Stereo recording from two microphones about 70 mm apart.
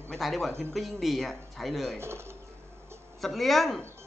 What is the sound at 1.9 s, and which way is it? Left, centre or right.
Speech, right.